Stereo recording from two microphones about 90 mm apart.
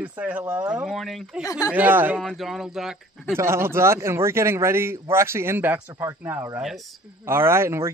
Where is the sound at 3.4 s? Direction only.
30° right (ahead or behind).